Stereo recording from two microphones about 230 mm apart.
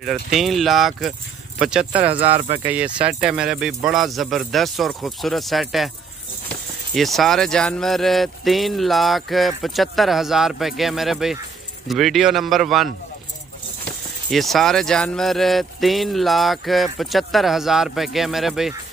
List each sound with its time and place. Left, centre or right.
0.0 s speech: centre
2.1 s speech: right
2.6 s speech: centre
14.3 s speech: centre